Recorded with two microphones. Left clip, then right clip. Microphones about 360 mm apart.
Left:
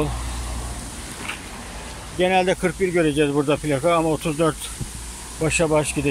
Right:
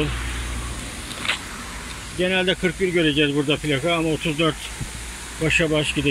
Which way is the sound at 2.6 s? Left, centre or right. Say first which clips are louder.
Even; left.